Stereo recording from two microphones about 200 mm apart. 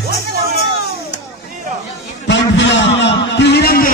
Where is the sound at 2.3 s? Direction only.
60° left (ahead or behind).